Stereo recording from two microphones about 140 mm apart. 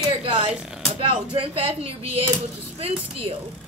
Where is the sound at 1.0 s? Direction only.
40° right (ahead or behind).